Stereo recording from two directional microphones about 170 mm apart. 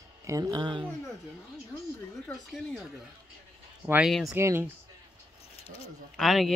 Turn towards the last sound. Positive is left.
turn(degrees=0)  # may be behind; listen again after turning